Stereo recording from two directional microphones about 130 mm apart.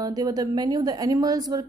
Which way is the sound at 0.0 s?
30° right (ahead or behind).